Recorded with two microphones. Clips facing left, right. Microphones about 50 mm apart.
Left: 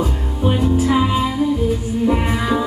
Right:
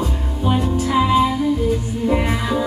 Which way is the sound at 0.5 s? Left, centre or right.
Centre.